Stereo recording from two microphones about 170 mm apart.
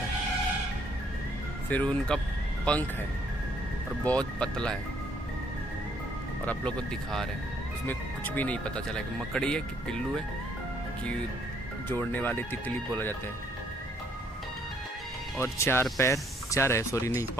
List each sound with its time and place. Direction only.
1.7 s speech: 10° left (ahead or behind)
4.0 s speech: 5° left (ahead or behind)
6.4 s speech: 5° left (ahead or behind)
11.9 s speech: 10° left (ahead or behind)
15.3 s speech: 15° left (ahead or behind)